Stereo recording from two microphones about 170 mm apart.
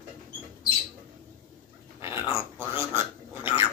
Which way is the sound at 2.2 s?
15° right (ahead or behind).